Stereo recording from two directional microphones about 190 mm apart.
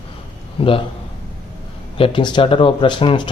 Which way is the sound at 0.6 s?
30° left (ahead or behind).